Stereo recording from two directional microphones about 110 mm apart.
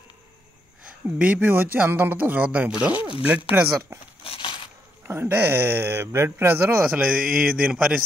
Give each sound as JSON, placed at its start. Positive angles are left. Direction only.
{"t": 0.8, "sound": "speech", "side_deg": -10}
{"t": 4.2, "sound": "a sound", "side_deg": 55}
{"t": 5.0, "sound": "speech", "side_deg": -20}